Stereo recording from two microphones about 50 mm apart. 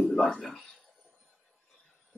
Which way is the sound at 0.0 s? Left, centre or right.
Centre.